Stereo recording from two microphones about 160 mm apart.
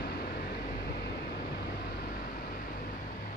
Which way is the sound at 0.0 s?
70° left (ahead or behind).